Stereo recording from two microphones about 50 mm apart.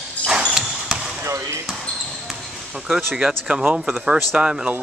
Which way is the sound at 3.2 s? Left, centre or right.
Centre.